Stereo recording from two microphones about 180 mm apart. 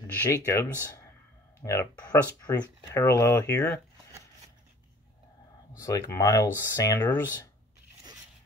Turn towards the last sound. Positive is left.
turn(degrees=15)  # may be behind; listen again after turning